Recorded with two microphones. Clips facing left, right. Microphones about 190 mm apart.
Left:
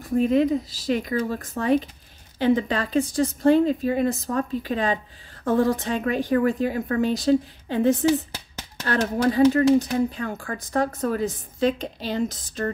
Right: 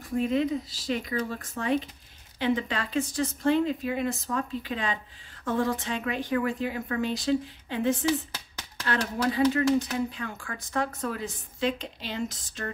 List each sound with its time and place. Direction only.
0.1 s speech: 40° left (ahead or behind)